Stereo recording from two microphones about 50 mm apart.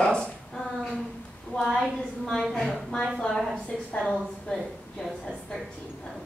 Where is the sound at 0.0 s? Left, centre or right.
Centre.